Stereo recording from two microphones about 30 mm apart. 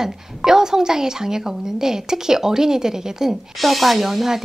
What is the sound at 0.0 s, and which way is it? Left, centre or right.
Speech, centre.